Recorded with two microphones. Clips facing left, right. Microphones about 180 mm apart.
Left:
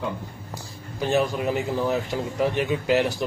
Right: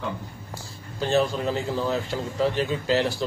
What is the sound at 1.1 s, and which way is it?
Speech, 15° left (ahead or behind).